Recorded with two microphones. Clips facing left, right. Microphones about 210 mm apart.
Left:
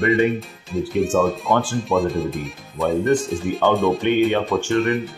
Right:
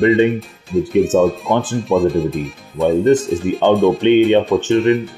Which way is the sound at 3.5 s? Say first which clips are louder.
Right 5 dB; 20° right (ahead or behind).